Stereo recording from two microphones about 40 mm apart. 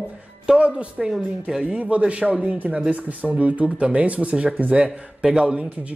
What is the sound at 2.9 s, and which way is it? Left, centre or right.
Speech, right.